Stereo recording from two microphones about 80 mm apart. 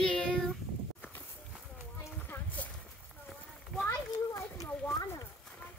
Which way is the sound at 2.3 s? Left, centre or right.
Left.